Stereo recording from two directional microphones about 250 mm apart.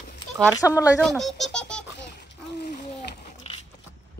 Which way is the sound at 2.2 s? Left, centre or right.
Left.